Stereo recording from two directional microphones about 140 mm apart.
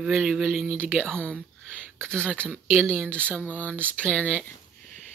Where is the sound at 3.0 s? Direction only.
10° left (ahead or behind).